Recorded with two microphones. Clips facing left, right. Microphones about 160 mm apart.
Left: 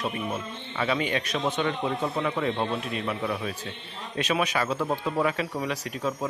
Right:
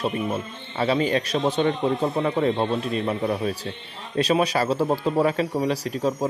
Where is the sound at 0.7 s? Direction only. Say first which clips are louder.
Right 5 dB; 35° right (ahead or behind).